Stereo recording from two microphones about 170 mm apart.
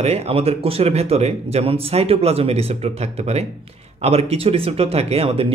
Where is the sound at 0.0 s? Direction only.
40° right (ahead or behind).